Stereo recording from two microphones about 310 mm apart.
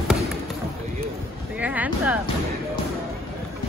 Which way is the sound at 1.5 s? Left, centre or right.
Centre.